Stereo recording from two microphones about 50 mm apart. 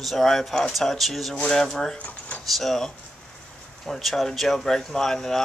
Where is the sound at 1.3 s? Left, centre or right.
Centre.